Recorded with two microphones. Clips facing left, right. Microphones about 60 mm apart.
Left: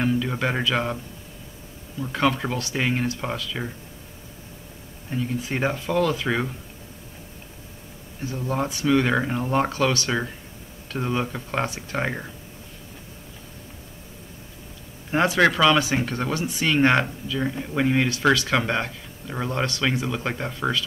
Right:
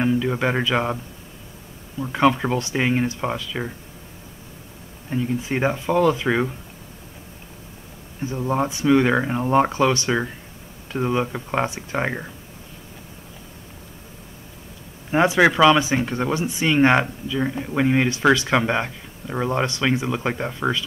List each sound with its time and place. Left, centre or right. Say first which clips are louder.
0.0 s speech: right 3 dB; centre
2.0 s speech: right 4 dB; centre
5.4 s speech: right 3 dB; centre
8.2 s speech: right 4 dB; right
15.2 s speech: right 3 dB; centre